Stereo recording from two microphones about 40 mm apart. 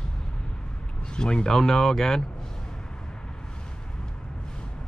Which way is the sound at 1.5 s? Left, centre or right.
Centre.